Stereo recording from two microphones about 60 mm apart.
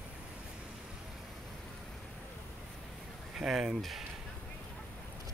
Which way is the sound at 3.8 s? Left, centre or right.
Centre.